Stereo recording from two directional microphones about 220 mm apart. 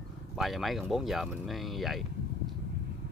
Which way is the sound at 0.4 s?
Centre (ahead or behind).